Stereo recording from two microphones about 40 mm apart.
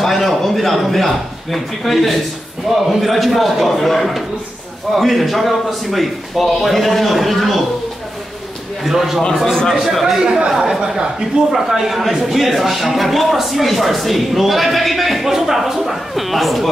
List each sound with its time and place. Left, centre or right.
0.0 s a man's voice: centre
8.8 s a man's voice: centre
10.2 s speech: right
11.5 s a man's voice: centre